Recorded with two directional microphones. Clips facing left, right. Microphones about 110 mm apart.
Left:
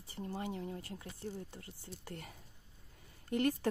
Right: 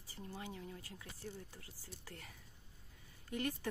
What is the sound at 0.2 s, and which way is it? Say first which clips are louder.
Speech: left 7 dB; 40° left (ahead or behind).